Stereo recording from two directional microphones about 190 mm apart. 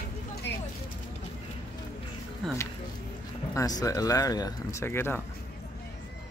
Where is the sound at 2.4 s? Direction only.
Centre (ahead or behind).